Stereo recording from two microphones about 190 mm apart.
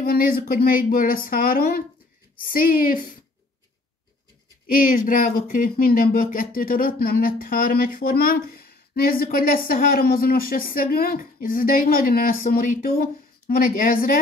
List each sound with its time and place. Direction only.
0.0 s speech: 50° left (ahead or behind)
4.6 s speech: 50° left (ahead or behind)